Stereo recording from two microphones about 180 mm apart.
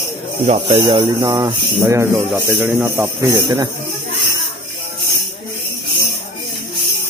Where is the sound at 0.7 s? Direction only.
25° right (ahead or behind).